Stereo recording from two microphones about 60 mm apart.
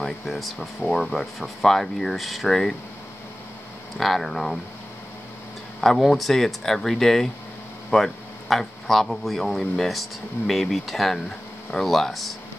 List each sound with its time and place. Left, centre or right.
0.0 s speech: centre
4.0 s speech: centre
5.8 s speech: centre